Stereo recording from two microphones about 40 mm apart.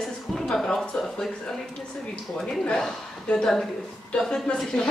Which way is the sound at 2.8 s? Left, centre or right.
Centre.